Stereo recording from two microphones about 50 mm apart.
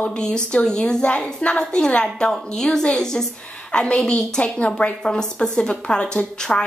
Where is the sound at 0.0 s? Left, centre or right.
Centre.